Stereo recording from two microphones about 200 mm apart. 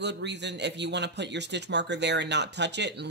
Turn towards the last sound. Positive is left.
turn(degrees=-60)  # may be behind; listen again after turning